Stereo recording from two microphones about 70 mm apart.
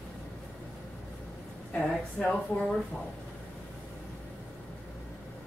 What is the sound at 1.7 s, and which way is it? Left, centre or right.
Speech, centre.